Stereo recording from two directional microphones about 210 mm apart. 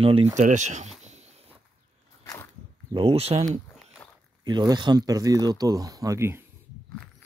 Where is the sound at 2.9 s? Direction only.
25° right (ahead or behind).